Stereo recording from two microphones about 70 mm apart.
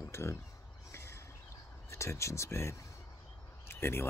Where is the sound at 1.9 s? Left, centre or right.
Left.